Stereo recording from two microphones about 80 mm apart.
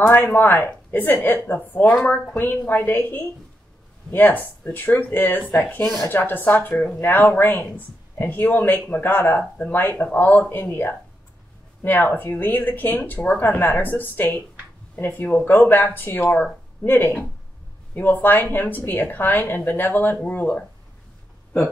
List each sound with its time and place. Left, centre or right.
0.0 s speech: left